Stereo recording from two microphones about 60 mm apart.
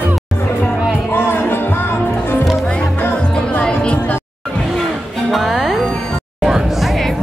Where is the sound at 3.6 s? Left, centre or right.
Left.